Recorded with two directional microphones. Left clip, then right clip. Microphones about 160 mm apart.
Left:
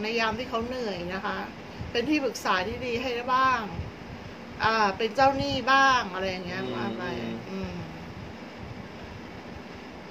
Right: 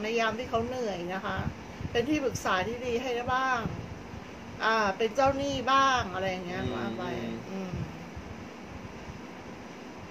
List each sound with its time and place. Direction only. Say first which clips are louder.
0.0 s a woman's voice: left 1 dB; 15° left (ahead or behind)